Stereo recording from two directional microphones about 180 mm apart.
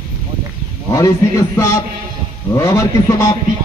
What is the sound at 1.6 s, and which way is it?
A man's voice, 15° left (ahead or behind).